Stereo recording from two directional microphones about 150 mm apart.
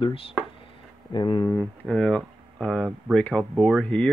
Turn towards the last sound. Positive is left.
turn(degrees=5)  # may be behind; listen again after turning